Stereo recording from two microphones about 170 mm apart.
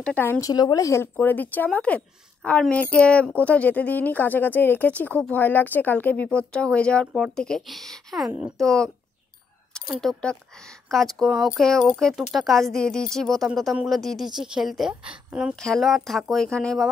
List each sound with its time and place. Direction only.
0.0 s speech: 10° left (ahead or behind); by 8.6 s 5° right (ahead or behind)
8.6 s speech: 5° left (ahead or behind)